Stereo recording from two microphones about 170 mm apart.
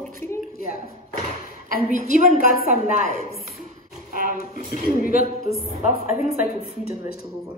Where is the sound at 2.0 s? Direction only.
60° left (ahead or behind).